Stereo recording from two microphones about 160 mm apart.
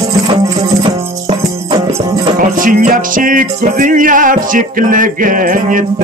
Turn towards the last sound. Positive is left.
turn(degrees=-55)  # may be behind; listen again after turning